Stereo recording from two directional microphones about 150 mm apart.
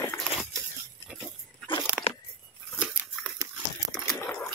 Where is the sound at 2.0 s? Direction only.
5° right (ahead or behind).